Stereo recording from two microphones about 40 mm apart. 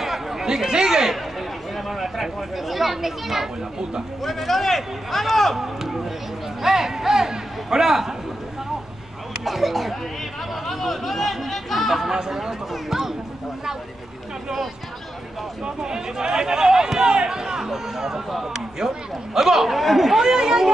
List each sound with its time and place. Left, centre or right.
0.0 s chatter: centre
1.9 s speech: centre
6.6 s speech: centre
9.4 s speech: centre
15.6 s speech: centre